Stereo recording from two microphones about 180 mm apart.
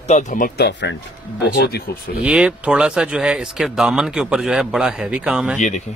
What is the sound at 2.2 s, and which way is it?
Speech, 5° right (ahead or behind).